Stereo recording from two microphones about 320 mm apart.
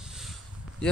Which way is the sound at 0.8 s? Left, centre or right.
Centre.